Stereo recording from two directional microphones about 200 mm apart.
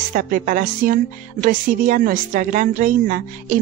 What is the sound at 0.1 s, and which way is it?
Speech, 45° right (ahead or behind).